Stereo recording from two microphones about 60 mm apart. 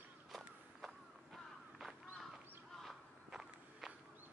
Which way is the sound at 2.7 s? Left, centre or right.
Centre.